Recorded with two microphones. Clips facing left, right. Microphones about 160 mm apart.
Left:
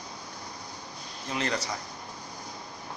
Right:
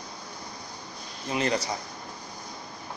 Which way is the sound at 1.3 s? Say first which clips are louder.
Right 4 dB; 15° right (ahead or behind).